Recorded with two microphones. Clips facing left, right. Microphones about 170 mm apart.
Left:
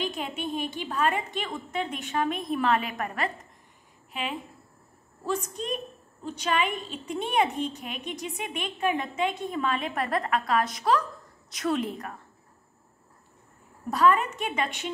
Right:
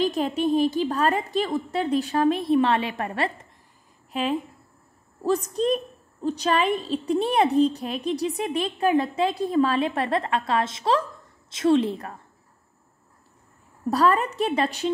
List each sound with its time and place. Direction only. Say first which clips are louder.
0.0 s a woman's voice: right 9 dB; 40° right (ahead or behind)
13.8 s a woman's voice: right 2 dB; 35° right (ahead or behind)